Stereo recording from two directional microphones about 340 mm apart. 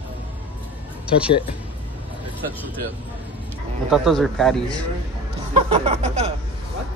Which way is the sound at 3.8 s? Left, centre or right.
Centre.